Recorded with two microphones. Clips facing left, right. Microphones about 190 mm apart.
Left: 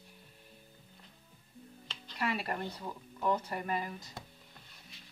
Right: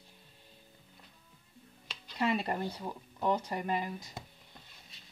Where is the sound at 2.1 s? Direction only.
20° right (ahead or behind).